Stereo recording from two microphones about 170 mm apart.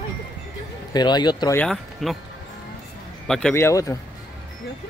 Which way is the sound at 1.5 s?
5° left (ahead or behind).